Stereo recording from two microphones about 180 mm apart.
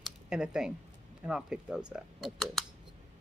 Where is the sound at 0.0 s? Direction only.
5° right (ahead or behind).